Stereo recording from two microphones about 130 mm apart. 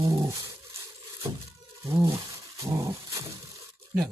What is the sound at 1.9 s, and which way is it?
Speech, 25° right (ahead or behind).